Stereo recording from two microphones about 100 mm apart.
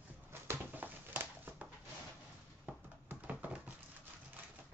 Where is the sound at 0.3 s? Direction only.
20° right (ahead or behind).